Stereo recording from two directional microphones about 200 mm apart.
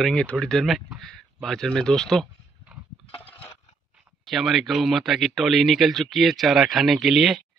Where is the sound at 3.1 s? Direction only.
30° left (ahead or behind).